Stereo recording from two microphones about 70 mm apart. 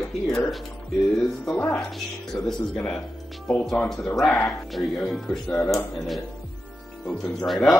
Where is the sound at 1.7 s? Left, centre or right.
Centre.